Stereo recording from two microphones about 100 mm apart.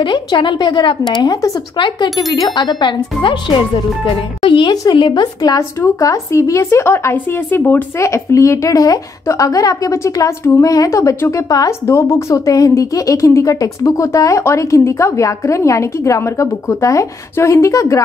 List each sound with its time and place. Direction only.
0.0 s speech: 50° left (ahead or behind)
5.6 s speech: 30° left (ahead or behind)